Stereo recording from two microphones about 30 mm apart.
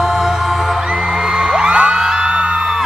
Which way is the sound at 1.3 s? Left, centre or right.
Right.